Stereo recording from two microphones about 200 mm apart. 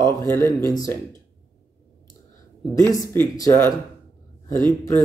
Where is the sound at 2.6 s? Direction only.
15° left (ahead or behind).